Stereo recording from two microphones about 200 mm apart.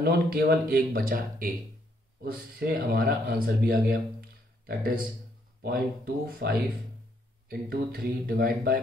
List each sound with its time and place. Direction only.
0.0 s speech: 50° right (ahead or behind)
2.6 s speech: 50° right (ahead or behind)